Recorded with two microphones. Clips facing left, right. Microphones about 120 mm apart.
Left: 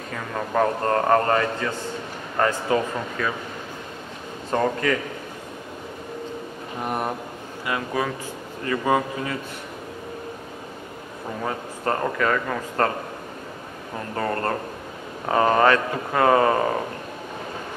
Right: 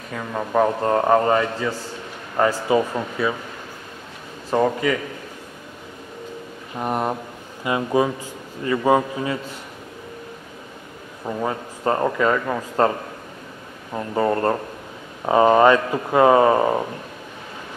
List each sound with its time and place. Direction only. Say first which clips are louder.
0.6 s speech: right 3 dB; 10° right (ahead or behind)
4.5 s speech: right 3 dB; 10° right (ahead or behind)
6.8 s a man's voice: right 4 dB; 20° right (ahead or behind)
11.4 s speech: right 3 dB; 20° right (ahead or behind)
13.9 s speech: right 6 dB; 15° right (ahead or behind)